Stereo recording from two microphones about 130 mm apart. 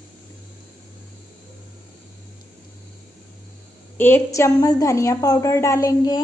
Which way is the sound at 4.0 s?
20° left (ahead or behind).